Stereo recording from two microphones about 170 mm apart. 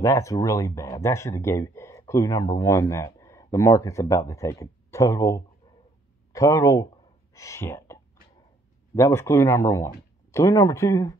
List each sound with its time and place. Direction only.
0.0 s speech: 20° left (ahead or behind)